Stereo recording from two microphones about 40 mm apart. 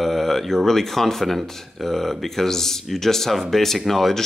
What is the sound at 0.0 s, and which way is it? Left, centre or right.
Speech, centre.